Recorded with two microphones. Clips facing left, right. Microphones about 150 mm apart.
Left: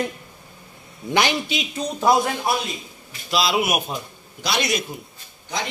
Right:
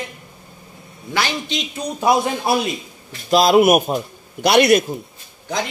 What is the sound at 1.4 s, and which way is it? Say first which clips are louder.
Speech: right 1 dB; 5° left (ahead or behind).